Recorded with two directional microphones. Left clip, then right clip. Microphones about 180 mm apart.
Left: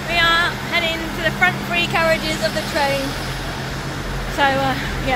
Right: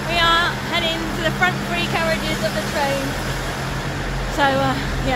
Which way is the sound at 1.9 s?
30° left (ahead or behind).